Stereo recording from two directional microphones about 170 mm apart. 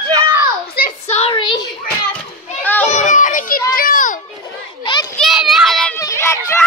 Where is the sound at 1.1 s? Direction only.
35° left (ahead or behind).